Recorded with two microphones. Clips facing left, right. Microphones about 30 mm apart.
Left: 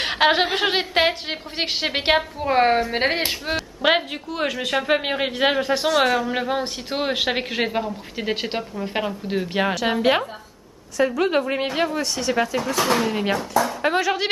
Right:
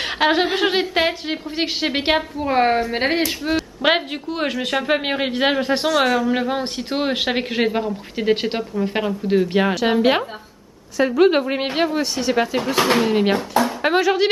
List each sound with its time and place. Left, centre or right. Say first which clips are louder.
0.0 s chuckle: even; centre
0.5 s speech: right 2 dB; centre
3.8 s speech: even; centre
5.9 s a woman's voice: right 2 dB; centre
12.7 s a woman's voice: right 3 dB; right
13.0 s speech: right 4 dB; centre